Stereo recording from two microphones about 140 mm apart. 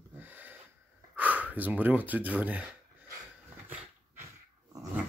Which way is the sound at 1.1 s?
10° right (ahead or behind).